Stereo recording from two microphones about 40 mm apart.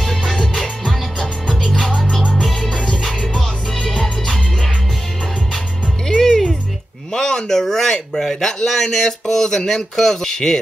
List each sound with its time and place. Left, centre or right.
0.0 s music: centre
2.7 s music: centre
3.0 s music: centre
6.0 s music: centre
7.1 s a sound: centre
9.3 s speech: centre